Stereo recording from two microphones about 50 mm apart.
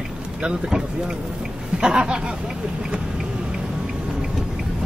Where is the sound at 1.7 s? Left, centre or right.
Centre.